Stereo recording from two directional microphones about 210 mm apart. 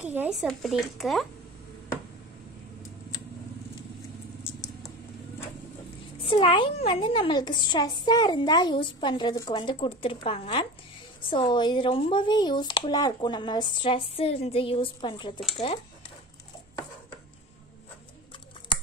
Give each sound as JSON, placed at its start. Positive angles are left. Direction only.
{"t": 0.0, "sound": "speech", "side_deg": -5}
{"t": 6.2, "sound": "a woman's voice", "side_deg": 25}